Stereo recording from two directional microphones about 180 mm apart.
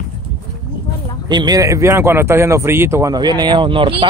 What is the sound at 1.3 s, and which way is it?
Speech, 20° right (ahead or behind).